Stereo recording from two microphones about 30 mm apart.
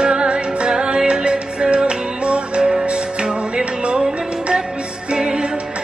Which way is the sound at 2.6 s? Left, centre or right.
Right.